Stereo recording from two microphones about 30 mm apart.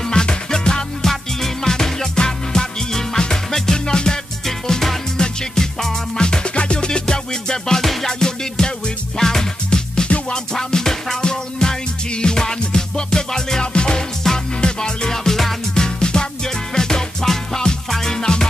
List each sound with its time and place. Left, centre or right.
0.0 s music: left
1.0 s music: centre
7.8 s music: centre
8.1 s music: left
11.1 s music: left
14.2 s music: centre
14.6 s music: left